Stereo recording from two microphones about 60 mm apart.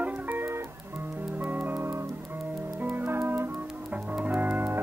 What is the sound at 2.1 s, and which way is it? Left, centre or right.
Music, right.